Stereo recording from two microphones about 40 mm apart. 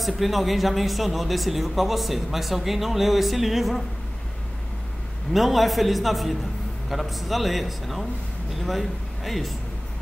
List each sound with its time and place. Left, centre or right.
0.0 s speech: centre
5.3 s a man's voice: centre